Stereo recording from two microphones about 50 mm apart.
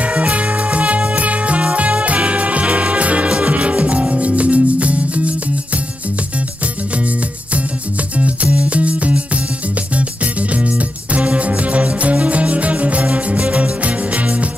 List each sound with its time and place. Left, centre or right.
0.0 s music: right
8.2 s music: right